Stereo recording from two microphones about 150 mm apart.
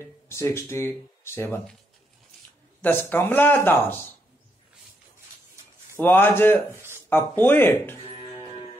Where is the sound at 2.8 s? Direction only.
15° left (ahead or behind).